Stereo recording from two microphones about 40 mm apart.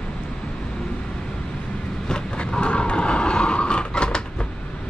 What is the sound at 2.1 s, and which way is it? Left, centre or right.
Vehicle, left.